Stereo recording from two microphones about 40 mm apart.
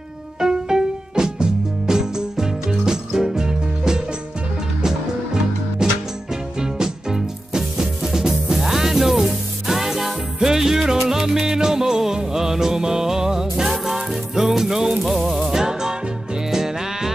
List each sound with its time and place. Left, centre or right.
0.4 s music: centre
15.5 s music: centre